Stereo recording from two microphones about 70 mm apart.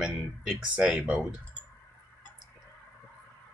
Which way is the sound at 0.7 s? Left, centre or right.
Centre.